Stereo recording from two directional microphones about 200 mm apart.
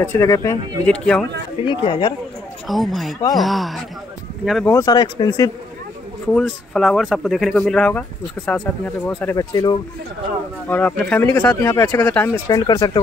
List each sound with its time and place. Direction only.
0.0 s speech: 15° left (ahead or behind)
1.6 s speech: 25° left (ahead or behind)
2.7 s speech: centre (ahead or behind)
4.7 s speech: 20° left (ahead or behind)
6.3 s speech: centre (ahead or behind); by 9.8 s 15° left (ahead or behind)
10.7 s speech: 5° left (ahead or behind)